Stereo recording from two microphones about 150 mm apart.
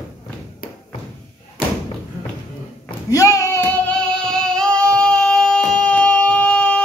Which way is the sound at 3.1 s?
20° left (ahead or behind).